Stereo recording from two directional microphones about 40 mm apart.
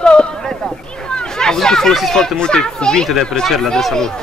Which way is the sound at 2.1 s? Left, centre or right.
Centre.